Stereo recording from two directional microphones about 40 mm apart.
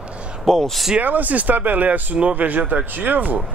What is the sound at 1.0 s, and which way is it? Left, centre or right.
Speech, right.